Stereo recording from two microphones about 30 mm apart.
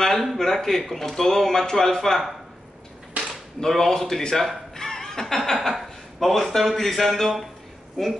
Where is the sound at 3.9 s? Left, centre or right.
Centre.